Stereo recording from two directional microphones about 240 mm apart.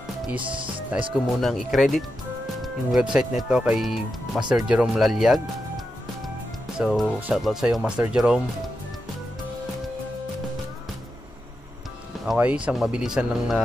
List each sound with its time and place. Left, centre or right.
0.4 s speech: right
1.1 s speech: centre
6.8 s speech: centre
12.3 s speech: centre